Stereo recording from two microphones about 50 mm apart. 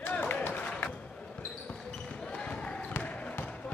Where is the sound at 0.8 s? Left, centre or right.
Left.